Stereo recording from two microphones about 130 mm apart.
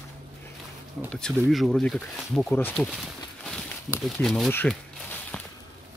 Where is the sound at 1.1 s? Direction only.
Centre (ahead or behind).